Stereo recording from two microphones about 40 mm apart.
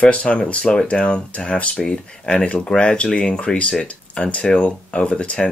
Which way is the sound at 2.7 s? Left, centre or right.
Centre.